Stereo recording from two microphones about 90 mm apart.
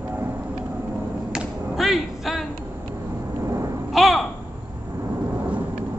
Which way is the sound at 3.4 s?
35° right (ahead or behind).